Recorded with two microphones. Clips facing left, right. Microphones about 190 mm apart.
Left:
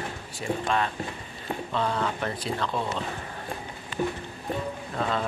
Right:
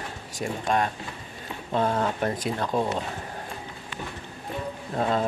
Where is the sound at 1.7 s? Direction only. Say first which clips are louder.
Right 4 dB; 45° right (ahead or behind).